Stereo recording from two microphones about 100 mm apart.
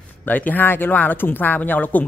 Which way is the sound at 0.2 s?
15° left (ahead or behind).